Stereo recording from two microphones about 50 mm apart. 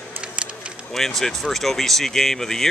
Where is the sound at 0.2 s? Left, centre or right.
Right.